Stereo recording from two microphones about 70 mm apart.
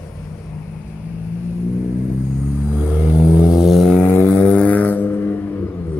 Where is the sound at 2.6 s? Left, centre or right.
Centre.